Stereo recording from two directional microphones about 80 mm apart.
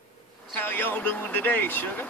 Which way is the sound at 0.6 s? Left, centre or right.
Left.